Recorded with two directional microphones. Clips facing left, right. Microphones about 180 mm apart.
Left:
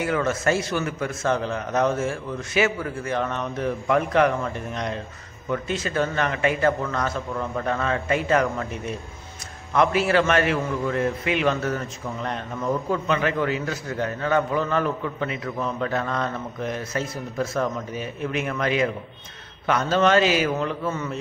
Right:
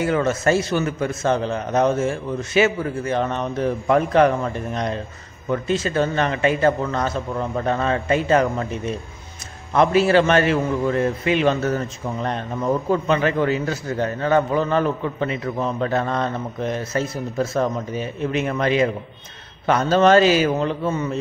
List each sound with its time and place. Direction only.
0.0 s a man's voice: 30° right (ahead or behind)